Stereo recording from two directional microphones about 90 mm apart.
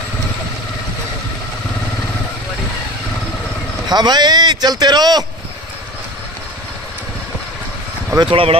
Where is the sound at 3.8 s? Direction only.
50° right (ahead or behind).